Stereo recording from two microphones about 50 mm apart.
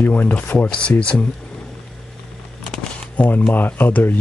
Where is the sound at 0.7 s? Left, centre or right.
Centre.